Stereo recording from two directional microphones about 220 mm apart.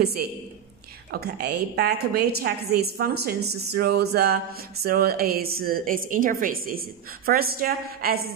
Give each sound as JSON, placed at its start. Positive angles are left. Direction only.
{"t": 1.1, "sound": "speech", "side_deg": -45}